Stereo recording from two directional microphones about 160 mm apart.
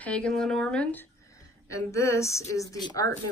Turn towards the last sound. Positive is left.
turn(degrees=25)  # may be behind; listen again after turning